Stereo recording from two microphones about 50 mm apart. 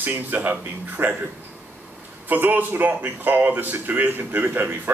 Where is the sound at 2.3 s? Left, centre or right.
Right.